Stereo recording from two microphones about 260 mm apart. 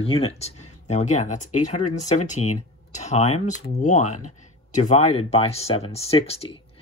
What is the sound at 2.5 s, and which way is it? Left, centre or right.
Speech, left.